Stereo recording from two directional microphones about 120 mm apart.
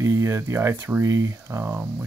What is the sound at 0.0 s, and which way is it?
Speech, 25° right (ahead or behind).